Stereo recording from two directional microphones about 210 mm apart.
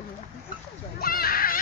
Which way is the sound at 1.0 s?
45° left (ahead or behind).